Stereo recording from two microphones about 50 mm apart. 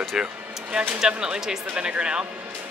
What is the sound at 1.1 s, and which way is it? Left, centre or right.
Speech, centre.